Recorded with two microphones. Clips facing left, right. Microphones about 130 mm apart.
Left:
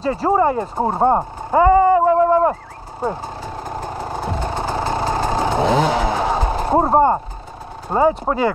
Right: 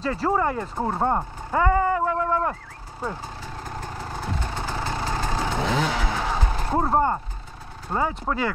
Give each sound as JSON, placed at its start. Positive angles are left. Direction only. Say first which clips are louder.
{"t": 0.0, "sound": "speech", "louder": "left 6 dB", "side_deg": 15}
{"t": 0.8, "sound": "a sound", "louder": "left 7 dB", "side_deg": 30}
{"t": 3.0, "sound": "vehicle", "louder": "left 8 dB", "side_deg": 25}
{"t": 7.9, "sound": "speech", "louder": "left 9 dB", "side_deg": 25}